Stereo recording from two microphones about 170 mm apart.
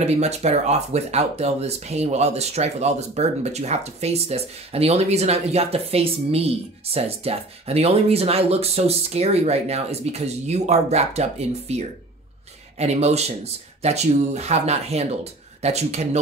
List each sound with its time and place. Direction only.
0.0 s speech: 40° right (ahead or behind)